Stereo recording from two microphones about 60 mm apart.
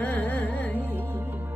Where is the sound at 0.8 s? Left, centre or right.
Right.